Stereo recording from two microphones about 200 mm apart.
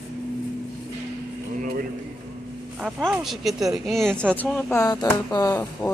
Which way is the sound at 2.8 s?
5° right (ahead or behind).